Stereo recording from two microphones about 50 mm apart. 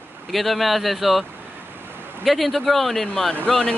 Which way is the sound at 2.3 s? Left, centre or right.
Centre.